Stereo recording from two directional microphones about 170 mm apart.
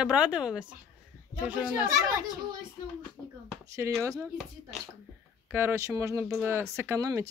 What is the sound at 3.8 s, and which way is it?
Speech, 15° right (ahead or behind).